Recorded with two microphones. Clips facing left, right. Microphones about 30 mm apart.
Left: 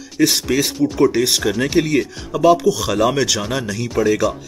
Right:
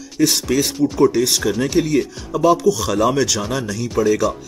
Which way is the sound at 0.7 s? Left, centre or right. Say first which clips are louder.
Even; centre.